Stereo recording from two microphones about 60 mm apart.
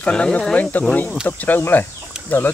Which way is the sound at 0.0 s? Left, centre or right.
Centre.